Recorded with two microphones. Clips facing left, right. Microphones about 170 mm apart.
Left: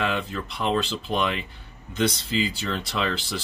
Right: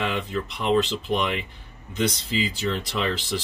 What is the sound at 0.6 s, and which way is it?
Speech, centre (ahead or behind).